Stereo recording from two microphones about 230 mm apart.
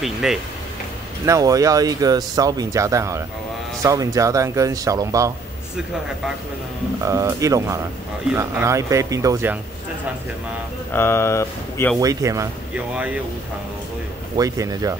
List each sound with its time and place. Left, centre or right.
0.0 s speech: centre
1.2 s speech: centre
7.0 s speech: centre
10.9 s speech: centre
12.0 s speech: centre
14.3 s speech: centre